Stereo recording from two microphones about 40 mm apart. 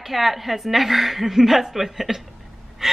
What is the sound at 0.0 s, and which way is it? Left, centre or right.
A woman's voice, centre.